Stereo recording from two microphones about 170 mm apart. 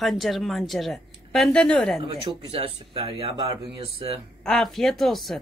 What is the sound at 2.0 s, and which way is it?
Speech, 30° right (ahead or behind).